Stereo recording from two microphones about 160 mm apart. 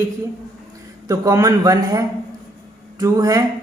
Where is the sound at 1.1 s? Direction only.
20° right (ahead or behind).